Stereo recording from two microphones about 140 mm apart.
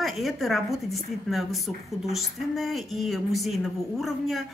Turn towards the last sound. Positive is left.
turn(degrees=0)  # may be behind; listen again after turning